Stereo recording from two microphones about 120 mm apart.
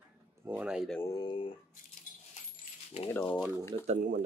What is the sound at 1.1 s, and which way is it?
Speech, 40° left (ahead or behind).